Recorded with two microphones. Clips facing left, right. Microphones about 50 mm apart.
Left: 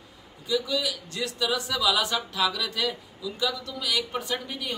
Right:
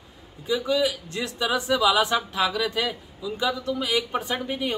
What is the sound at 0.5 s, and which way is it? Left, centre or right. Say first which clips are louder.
A man's voice: right 4 dB; right.